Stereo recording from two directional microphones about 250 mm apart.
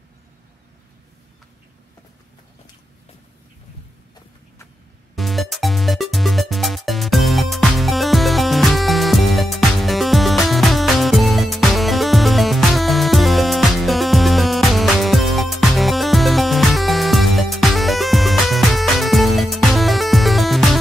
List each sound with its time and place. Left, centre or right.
5.1 s music: centre